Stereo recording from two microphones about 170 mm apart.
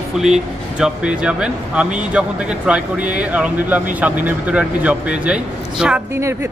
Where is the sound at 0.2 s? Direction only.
5° right (ahead or behind).